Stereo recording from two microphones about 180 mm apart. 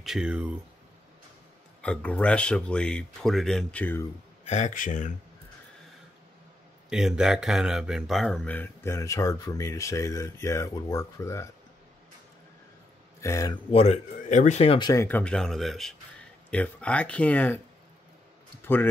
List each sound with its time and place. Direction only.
0.0 s speech: 5° right (ahead or behind)
1.8 s speech: 5° left (ahead or behind)
4.5 s speech: 45° left (ahead or behind)
6.9 s speech: 5° right (ahead or behind); by 11.4 s 15° left (ahead or behind)
13.2 s speech: 20° left (ahead or behind)
13.7 s speech: 35° left (ahead or behind)
14.9 s speech: 15° left (ahead or behind)
18.6 s a sound: 10° left (ahead or behind)